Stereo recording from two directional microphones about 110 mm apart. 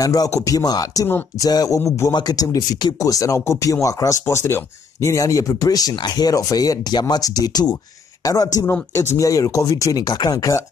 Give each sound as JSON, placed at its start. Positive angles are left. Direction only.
{"t": 0.0, "sound": "speech", "side_deg": 35}
{"t": 8.9, "sound": "speech", "side_deg": 25}